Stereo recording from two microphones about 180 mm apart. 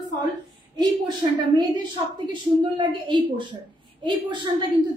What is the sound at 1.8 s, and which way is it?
A woman's voice, 25° right (ahead or behind).